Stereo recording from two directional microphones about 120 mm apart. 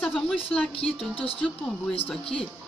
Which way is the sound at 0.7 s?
50° left (ahead or behind).